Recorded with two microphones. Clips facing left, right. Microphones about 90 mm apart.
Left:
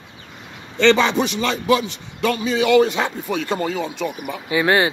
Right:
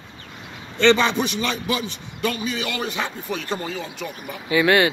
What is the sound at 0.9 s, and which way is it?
Speech, 90° left.